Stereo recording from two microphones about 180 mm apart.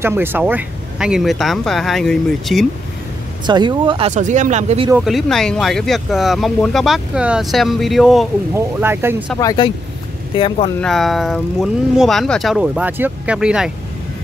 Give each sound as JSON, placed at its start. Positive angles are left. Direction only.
{"t": 0.0, "sound": "speech", "side_deg": -15}
{"t": 3.4, "sound": "speech", "side_deg": -25}
{"t": 4.1, "sound": "speech", "side_deg": -45}
{"t": 4.9, "sound": "speech", "side_deg": 0}
{"t": 8.5, "sound": "speech", "side_deg": -10}
{"t": 9.4, "sound": "speech", "side_deg": 20}
{"t": 10.8, "sound": "speech", "side_deg": 0}